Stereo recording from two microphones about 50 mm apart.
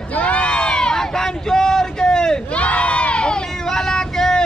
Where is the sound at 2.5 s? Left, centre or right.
Left.